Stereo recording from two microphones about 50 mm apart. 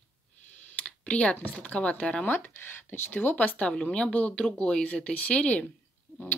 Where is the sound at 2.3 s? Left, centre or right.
Left.